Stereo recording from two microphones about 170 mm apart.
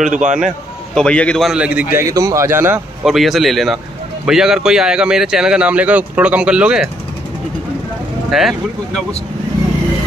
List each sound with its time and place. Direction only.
0.0 s a man's voice: 50° right (ahead or behind)
0.9 s a man's voice: 5° left (ahead or behind); by 3.1 s 10° right (ahead or behind)
3.1 s speech: centre (ahead or behind)
8.3 s speech: centre (ahead or behind)